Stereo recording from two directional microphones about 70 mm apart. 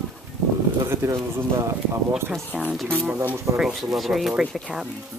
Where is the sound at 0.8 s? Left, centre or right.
Right.